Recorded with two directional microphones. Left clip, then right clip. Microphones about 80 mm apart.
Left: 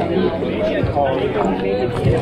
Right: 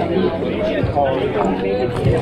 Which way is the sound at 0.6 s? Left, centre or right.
Right.